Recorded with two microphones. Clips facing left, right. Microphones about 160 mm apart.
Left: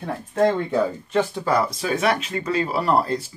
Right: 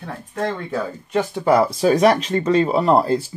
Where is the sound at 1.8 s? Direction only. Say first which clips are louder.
Right 7 dB; 35° right (ahead or behind).